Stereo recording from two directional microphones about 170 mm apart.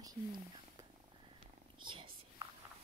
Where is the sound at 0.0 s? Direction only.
25° right (ahead or behind).